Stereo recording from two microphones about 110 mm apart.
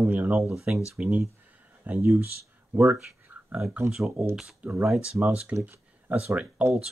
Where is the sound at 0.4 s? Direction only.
Centre (ahead or behind).